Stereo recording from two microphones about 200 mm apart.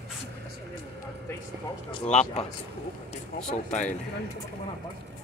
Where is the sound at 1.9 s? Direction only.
35° left (ahead or behind).